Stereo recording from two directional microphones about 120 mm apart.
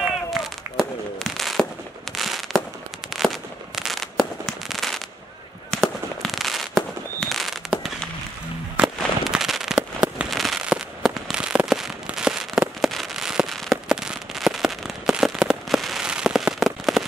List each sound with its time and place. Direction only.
0.3 s fireworks: centre (ahead or behind)
8.7 s firecracker: 5° right (ahead or behind)
10.3 s fireworks: centre (ahead or behind)